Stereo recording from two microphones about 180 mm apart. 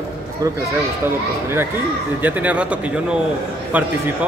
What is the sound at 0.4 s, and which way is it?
Speech, 20° right (ahead or behind).